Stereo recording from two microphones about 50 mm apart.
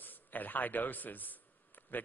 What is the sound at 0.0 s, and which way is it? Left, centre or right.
Speech, left.